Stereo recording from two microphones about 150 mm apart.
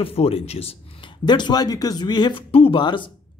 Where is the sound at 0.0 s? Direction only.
40° left (ahead or behind).